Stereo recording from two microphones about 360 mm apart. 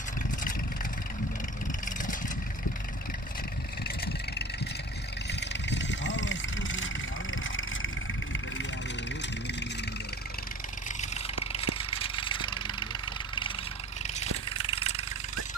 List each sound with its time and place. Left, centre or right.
3.8 s vehicle: left
5.7 s vehicle: left
11.5 s a sound: centre
14.6 s vehicle: centre